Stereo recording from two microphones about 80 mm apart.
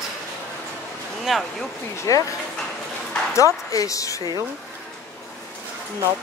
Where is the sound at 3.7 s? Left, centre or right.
Left.